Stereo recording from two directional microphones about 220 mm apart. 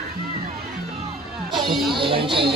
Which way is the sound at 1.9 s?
25° right (ahead or behind).